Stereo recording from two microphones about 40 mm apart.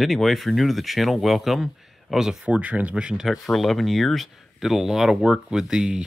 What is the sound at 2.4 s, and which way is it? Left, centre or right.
Speech, right.